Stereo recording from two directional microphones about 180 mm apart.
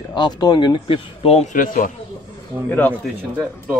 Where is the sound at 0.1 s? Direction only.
25° left (ahead or behind); by 1.9 s 50° left (ahead or behind).